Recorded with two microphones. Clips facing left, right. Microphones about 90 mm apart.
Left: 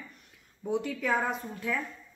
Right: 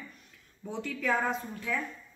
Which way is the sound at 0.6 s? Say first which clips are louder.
Left 2 dB; 10° left (ahead or behind).